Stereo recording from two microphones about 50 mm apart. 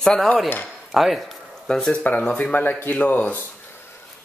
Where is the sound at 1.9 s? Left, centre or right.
Left.